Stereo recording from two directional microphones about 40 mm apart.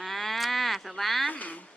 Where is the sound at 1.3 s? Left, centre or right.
Left.